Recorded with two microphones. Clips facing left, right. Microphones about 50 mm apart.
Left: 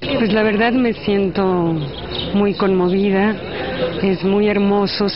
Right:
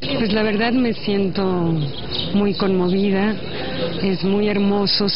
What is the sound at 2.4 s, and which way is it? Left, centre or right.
Speech, centre.